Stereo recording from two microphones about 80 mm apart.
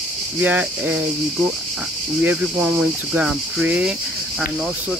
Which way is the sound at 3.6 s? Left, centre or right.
Centre.